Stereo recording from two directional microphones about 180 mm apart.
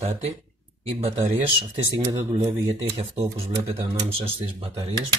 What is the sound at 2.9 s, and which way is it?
Speech, 35° right (ahead or behind).